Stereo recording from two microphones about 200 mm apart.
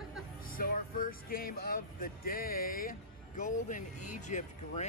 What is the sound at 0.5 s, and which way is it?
Speech, 45° left (ahead or behind).